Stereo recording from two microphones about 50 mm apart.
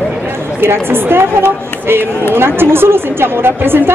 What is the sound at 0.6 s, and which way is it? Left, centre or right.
Speech, right.